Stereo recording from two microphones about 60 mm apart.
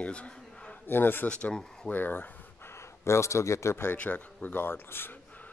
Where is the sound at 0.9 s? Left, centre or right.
Left.